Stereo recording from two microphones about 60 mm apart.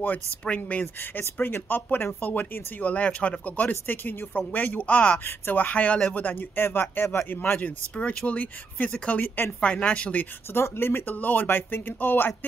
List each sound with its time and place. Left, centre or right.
0.6 s speech: left
1.1 s speech: left
7.9 s speech: centre
8.4 s speech: left
10.5 s speech: left